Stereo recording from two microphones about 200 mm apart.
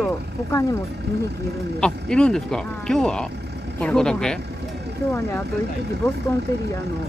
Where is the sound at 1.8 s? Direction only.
5° left (ahead or behind).